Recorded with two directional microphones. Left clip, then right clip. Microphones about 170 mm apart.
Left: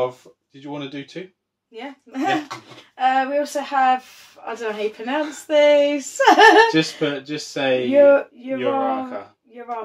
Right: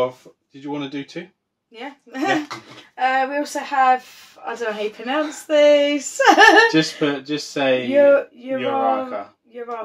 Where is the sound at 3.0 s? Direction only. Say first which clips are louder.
Left 1 dB; 15° right (ahead or behind).